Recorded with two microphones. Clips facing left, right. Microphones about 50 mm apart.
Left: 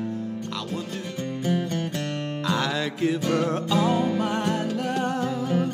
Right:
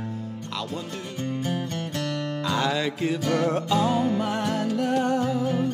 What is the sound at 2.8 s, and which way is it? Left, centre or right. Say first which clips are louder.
Mantra: left 1 dB; centre.